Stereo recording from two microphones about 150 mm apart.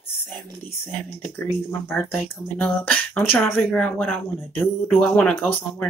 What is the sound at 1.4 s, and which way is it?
Speech, 15° left (ahead or behind).